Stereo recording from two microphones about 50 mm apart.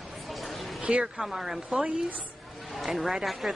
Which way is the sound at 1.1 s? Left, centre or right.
Centre.